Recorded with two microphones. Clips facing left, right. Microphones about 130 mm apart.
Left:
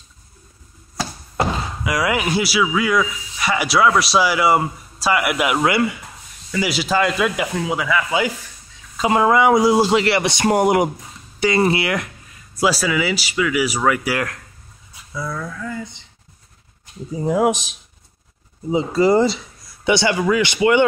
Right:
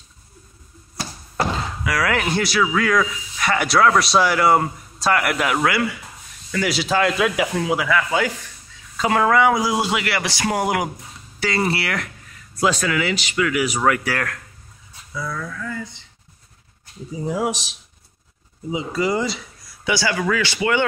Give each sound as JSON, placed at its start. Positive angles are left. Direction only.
{"t": 1.3, "sound": "speech", "side_deg": 15}
{"t": 6.5, "sound": "speech", "side_deg": 5}
{"t": 8.9, "sound": "speech", "side_deg": 20}
{"t": 12.5, "sound": "speech", "side_deg": 5}
{"t": 17.1, "sound": "speech", "side_deg": 50}
{"t": 18.7, "sound": "speech", "side_deg": 35}